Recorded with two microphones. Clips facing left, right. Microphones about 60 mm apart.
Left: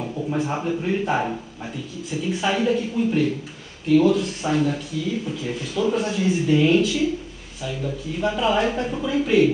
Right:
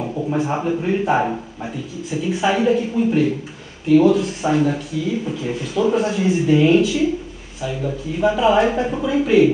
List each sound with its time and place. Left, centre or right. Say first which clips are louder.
0.0 s speech: right 4 dB; centre